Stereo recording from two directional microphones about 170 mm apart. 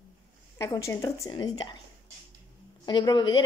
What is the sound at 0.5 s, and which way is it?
A woman's voice, 20° left (ahead or behind).